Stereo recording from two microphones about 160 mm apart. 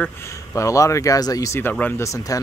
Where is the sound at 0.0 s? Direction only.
20° left (ahead or behind).